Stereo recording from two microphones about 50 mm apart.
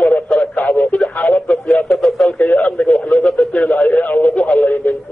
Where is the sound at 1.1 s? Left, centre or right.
Left.